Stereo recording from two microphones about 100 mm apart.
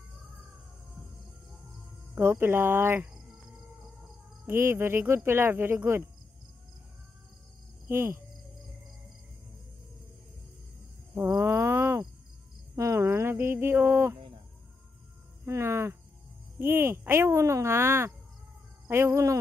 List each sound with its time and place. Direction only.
2.1 s speech: 25° right (ahead or behind)
4.5 s speech: 25° right (ahead or behind)
7.9 s speech: 25° right (ahead or behind)
11.1 s a sound: 25° right (ahead or behind)
15.4 s speech: 25° right (ahead or behind)